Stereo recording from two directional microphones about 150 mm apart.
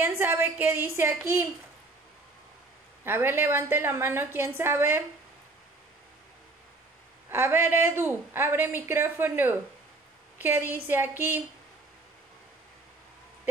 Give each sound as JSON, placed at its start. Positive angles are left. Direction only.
{"t": 0.0, "sound": "a woman's voice", "side_deg": -15}
{"t": 3.0, "sound": "a woman's voice", "side_deg": -15}
{"t": 7.2, "sound": "a woman's voice", "side_deg": -15}